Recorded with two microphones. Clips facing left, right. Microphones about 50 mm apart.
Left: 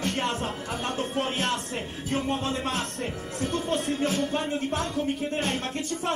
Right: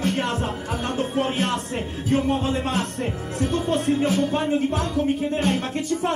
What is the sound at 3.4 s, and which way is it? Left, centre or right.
Music, right.